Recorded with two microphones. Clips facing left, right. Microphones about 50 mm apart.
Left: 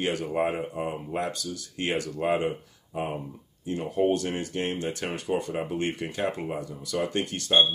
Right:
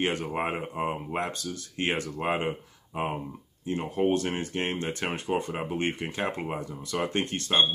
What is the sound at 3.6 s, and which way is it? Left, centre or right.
Speech, right.